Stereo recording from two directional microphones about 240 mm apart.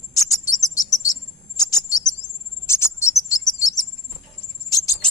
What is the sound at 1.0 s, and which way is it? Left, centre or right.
Bird vocalization, centre.